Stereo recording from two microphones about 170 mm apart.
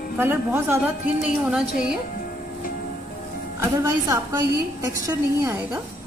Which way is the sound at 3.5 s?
20° right (ahead or behind).